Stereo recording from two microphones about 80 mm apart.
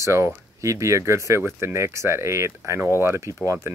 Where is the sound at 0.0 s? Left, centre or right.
Right.